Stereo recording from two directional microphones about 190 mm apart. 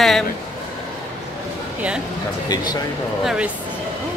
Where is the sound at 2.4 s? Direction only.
20° left (ahead or behind).